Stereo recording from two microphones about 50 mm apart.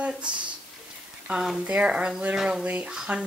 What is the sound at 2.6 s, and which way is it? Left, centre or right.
Speech, right.